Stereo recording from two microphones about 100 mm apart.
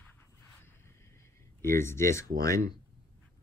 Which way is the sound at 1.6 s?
25° left (ahead or behind).